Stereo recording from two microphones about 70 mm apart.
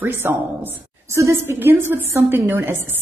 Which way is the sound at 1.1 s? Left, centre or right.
Right.